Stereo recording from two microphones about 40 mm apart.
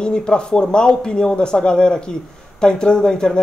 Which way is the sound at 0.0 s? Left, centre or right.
Left.